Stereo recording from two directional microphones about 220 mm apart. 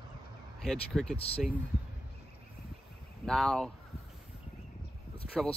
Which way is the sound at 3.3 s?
Centre (ahead or behind).